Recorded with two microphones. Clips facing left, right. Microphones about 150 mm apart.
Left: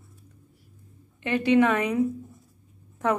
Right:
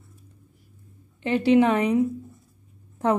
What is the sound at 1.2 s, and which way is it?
Speech, 30° right (ahead or behind).